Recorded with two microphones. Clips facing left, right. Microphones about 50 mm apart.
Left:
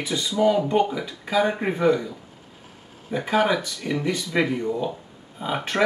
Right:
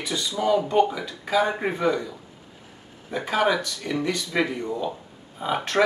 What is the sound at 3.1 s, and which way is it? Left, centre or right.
Speech, centre.